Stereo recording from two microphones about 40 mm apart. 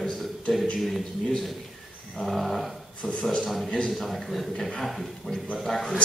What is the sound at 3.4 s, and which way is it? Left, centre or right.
A man's voice, centre.